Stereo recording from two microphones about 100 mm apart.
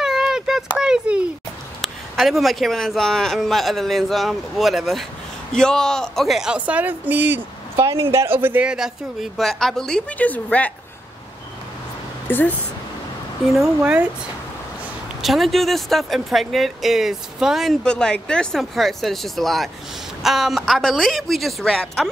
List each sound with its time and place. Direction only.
0.0 s a sound: 5° right (ahead or behind)
1.8 s speech: centre (ahead or behind); by 8.6 s 20° right (ahead or behind)
8.6 s a woman's voice: 5° right (ahead or behind); by 10.7 s 15° left (ahead or behind)
12.3 s speech: 20° left (ahead or behind)
13.5 s speech: 5° right (ahead or behind)
15.2 s speech: centre (ahead or behind)
17.8 s speech: 10° left (ahead or behind)